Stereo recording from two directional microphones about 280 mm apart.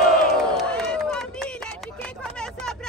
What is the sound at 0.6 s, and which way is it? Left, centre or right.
Run, centre.